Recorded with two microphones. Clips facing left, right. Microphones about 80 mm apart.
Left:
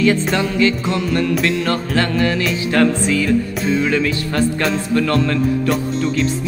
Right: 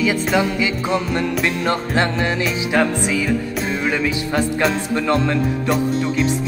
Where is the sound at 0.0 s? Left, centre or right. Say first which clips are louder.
Left 2 dB; centre.